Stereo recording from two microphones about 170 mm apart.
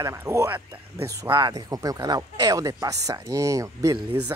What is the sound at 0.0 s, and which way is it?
Speech, 15° right (ahead or behind).